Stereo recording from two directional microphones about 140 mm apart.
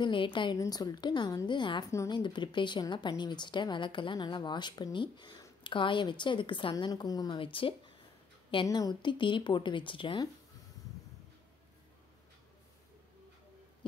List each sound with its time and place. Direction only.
0.0 s speech: 35° left (ahead or behind)
1.9 s a woman's voice: 20° left (ahead or behind)
2.1 s speech: 35° left (ahead or behind)
8.6 s speech: 30° left (ahead or behind)